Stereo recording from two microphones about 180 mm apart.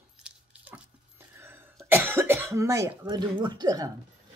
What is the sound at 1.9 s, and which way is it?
Speech, 10° right (ahead or behind).